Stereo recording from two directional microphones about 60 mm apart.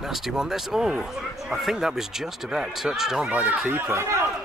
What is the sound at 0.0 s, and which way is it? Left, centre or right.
Speech, centre.